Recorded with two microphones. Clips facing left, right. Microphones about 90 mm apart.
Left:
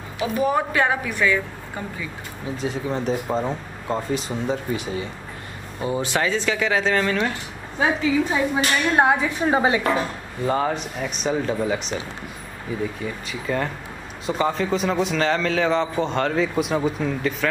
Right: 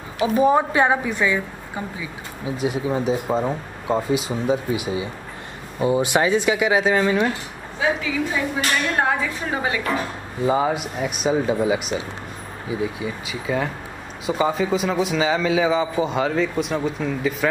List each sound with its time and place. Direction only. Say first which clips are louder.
0.2 s a woman's voice: right 4 dB; 25° right (ahead or behind)
8.5 s a woman's voice: left 3 dB; 20° left (ahead or behind)
10.4 s a woman's voice: right 2 dB; 10° right (ahead or behind)